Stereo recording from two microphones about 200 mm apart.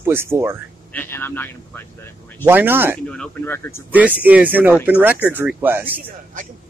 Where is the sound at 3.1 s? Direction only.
5° left (ahead or behind).